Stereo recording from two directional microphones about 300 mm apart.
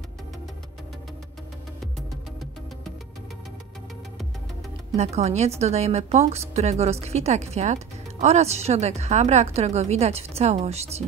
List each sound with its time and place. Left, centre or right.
4.9 s speech: right